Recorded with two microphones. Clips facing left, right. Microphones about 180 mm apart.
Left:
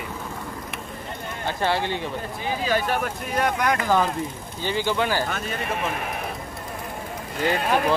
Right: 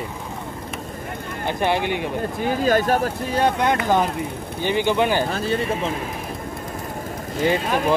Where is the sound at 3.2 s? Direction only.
30° right (ahead or behind).